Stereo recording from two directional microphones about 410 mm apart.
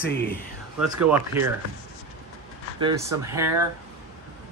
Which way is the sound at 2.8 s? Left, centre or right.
Centre.